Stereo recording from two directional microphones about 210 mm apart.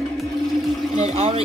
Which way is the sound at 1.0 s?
30° right (ahead or behind).